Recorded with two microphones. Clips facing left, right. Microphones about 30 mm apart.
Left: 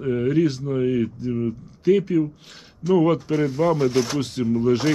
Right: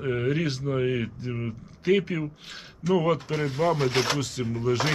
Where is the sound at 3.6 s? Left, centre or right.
Right.